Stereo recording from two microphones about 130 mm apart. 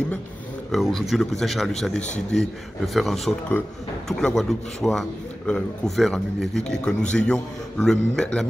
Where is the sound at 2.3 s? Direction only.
Centre (ahead or behind).